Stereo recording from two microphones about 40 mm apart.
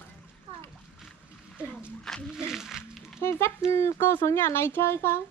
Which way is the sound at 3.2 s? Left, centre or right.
Left.